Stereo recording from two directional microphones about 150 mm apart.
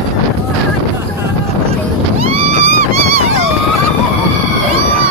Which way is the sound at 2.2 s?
45° right (ahead or behind).